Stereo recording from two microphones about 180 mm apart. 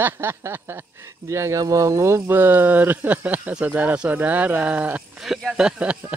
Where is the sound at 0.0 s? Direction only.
15° right (ahead or behind).